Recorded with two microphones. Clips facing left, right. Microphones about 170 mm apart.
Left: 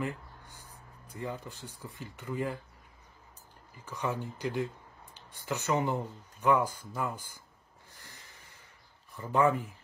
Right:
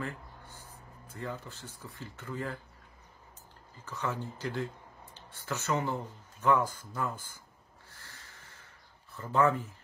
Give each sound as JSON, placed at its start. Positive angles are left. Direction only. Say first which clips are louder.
{"t": 0.0, "sound": "speech", "louder": "left 3 dB", "side_deg": 15}
{"t": 3.7, "sound": "speech", "louder": "left 2 dB", "side_deg": 15}
{"t": 7.9, "sound": "a sound", "louder": "even", "side_deg": 15}
{"t": 9.1, "sound": "speech", "louder": "left 1 dB", "side_deg": 15}